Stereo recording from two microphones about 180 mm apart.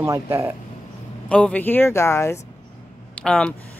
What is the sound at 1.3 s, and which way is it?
Speech, 5° left (ahead or behind).